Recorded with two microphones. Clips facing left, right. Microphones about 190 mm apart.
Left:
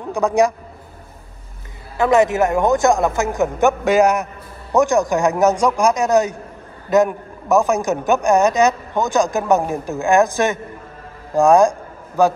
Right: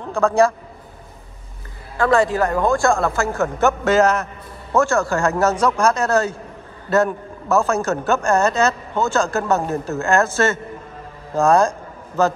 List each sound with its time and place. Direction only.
0.0 s a man's voice: 15° left (ahead or behind)
2.0 s a man's voice: 20° left (ahead or behind)